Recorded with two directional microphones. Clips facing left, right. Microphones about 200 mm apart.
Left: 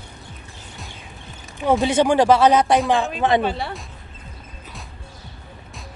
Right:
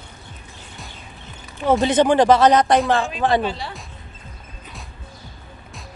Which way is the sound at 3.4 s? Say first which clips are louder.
Left 2 dB; 55° left (ahead or behind).